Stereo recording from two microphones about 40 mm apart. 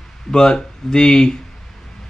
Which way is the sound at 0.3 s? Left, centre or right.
Centre.